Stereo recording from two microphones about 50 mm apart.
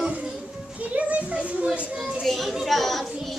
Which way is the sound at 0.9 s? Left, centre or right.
Right.